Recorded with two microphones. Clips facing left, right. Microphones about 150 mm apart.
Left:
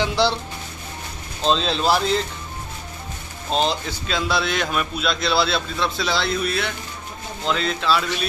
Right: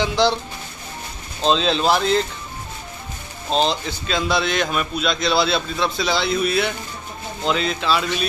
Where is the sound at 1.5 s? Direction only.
Centre (ahead or behind).